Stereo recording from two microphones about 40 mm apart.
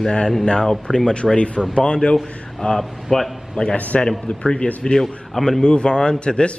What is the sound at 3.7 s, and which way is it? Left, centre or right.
Speech, left.